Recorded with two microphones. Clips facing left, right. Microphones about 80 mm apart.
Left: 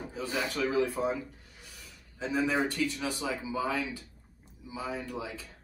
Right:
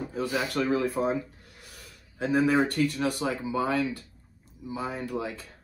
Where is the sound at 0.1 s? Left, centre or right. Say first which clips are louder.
Right 4 dB; right.